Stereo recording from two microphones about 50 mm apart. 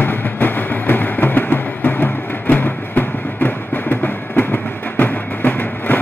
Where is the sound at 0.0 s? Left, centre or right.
Left.